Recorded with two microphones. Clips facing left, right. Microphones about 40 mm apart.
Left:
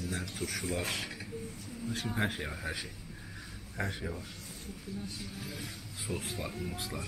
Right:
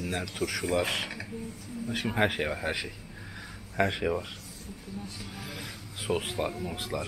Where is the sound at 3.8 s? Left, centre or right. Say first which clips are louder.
Right 10 dB; right.